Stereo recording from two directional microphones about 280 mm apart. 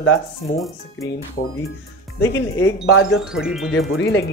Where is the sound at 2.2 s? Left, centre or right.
Left.